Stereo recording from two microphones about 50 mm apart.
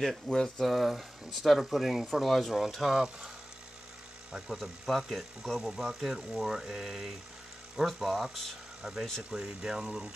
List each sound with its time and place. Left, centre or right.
0.3 s speech: centre
0.7 s speech: centre
4.3 s speech: centre
8.8 s speech: right